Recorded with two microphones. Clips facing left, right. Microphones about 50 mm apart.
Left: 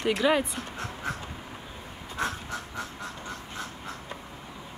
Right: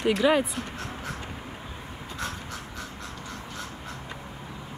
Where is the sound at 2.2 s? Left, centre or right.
Left.